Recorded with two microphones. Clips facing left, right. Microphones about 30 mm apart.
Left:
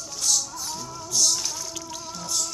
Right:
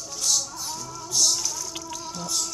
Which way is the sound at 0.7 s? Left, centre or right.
Centre.